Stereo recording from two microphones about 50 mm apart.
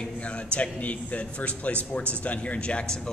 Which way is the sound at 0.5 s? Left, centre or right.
Left.